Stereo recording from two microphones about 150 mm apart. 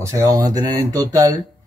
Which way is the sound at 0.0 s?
20° right (ahead or behind).